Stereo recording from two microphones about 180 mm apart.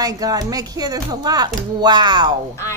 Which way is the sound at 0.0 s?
20° right (ahead or behind).